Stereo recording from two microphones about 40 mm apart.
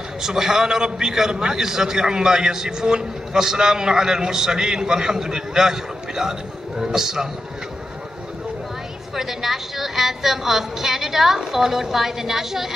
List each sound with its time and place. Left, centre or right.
0.2 s a man's voice: centre
9.1 s a man's voice: centre